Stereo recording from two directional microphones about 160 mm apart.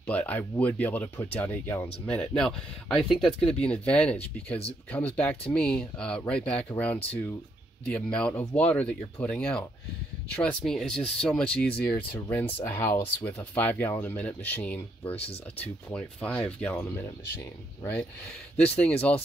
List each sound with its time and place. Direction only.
0.0 s speech: 10° left (ahead or behind)
7.8 s speech: 10° left (ahead or behind)
15.1 s speech: 40° left (ahead or behind)
15.6 s speech: 10° left (ahead or behind)
18.8 s speech: 10° left (ahead or behind)